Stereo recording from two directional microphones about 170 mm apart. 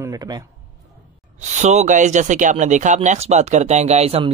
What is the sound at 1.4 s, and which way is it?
Speech, 45° right (ahead or behind).